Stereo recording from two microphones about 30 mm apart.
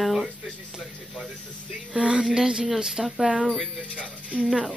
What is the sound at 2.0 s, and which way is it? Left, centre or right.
Music, right.